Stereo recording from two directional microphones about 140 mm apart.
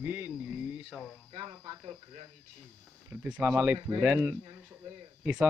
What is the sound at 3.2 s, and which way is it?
Speech, 10° right (ahead or behind).